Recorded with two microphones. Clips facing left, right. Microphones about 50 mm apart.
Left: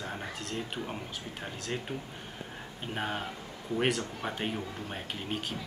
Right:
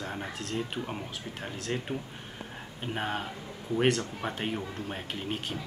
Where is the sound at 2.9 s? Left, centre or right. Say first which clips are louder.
Right 1 dB; centre.